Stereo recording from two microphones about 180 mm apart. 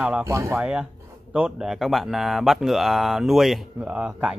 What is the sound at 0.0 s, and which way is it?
Speech, 10° right (ahead or behind).